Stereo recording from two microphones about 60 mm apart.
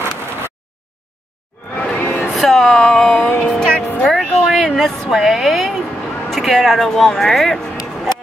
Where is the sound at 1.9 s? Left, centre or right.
Left.